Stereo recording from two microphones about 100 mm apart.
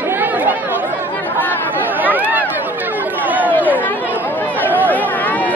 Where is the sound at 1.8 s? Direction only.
15° right (ahead or behind).